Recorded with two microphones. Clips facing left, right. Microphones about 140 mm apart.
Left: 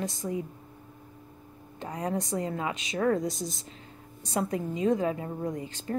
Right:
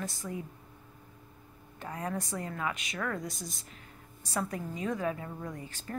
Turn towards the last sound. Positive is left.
turn(degrees=20)  # may be behind; listen again after turning